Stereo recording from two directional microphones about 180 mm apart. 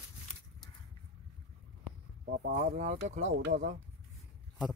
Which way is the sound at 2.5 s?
40° right (ahead or behind).